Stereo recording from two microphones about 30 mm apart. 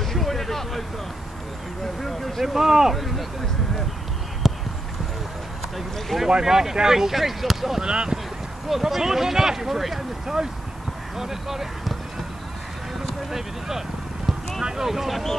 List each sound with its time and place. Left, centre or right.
0.0 s vehicle: centre
2.0 s speech: centre
2.4 s speech: centre
4.4 s clip-clop: centre
5.8 s speech: centre
6.4 s speech: centre
7.8 s speech: right
8.6 s speech: centre
13.3 s speech: centre